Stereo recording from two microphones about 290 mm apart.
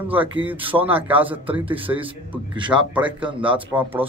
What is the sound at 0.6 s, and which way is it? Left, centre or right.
Speech, centre.